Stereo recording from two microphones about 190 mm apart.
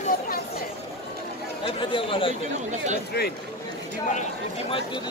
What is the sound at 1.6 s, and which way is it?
Speech, 25° left (ahead or behind).